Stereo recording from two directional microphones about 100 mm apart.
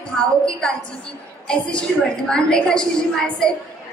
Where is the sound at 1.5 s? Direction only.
10° left (ahead or behind).